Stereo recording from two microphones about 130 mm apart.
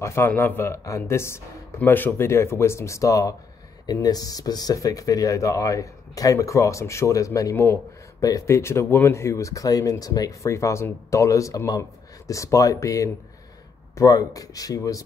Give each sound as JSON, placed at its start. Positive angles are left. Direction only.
{"t": 0.0, "sound": "speech", "side_deg": 20}